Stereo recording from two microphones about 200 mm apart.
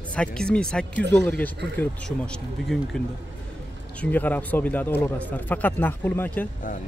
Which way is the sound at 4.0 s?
10° left (ahead or behind).